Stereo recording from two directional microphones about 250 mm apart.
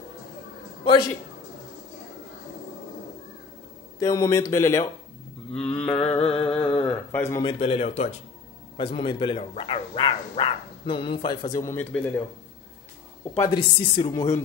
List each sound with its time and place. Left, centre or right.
4.0 s speech: centre
5.6 s mantra: centre
6.3 s a sound: centre
7.4 s speech: left; by 12.2 s centre
13.4 s speech: centre